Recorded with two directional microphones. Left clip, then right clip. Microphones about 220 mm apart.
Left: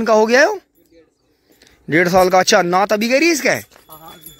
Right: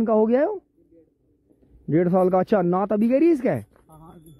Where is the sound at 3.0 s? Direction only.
10° right (ahead or behind).